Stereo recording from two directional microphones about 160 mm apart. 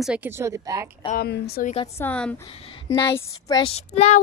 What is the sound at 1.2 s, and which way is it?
Speech, 75° left (ahead or behind).